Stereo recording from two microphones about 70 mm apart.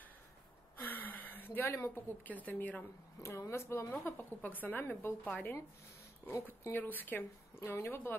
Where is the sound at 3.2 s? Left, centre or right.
Left.